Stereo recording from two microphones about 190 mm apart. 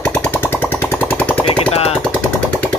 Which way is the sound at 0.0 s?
5° left (ahead or behind).